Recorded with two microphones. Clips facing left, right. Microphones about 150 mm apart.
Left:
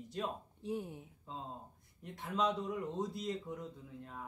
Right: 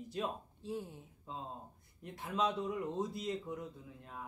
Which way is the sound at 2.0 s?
Centre (ahead or behind).